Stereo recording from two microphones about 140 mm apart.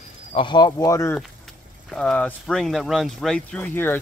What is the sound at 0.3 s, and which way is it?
Speech, 35° left (ahead or behind).